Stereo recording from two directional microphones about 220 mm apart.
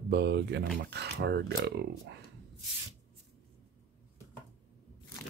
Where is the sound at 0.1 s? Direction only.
50° right (ahead or behind).